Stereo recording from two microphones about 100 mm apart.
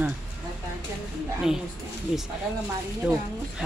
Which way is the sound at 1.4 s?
5° right (ahead or behind).